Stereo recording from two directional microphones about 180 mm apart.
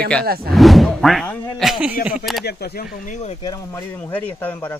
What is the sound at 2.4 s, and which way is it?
Speech, 60° left (ahead or behind).